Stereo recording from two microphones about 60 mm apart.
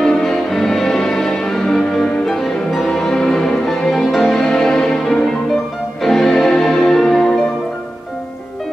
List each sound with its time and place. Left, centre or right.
0.0 s music: centre